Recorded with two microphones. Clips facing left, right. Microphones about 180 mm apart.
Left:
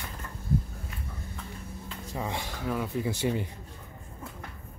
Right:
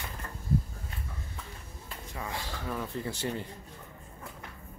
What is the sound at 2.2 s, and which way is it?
Speech, 20° left (ahead or behind).